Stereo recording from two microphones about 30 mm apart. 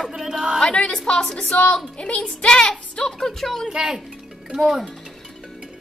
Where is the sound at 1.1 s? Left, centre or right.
Left.